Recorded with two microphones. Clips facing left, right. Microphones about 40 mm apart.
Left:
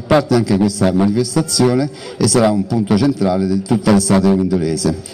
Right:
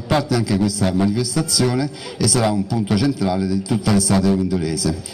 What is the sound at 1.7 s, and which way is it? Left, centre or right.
A man's voice, centre.